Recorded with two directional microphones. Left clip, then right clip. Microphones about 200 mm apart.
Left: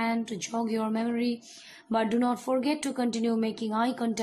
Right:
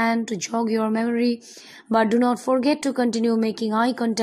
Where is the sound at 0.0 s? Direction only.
25° right (ahead or behind).